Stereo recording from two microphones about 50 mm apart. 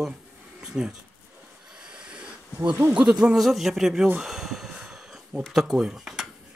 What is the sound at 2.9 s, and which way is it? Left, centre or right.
Speech, centre.